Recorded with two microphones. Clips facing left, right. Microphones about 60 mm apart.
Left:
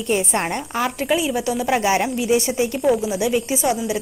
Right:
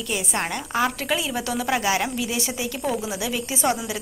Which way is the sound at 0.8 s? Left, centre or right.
Centre.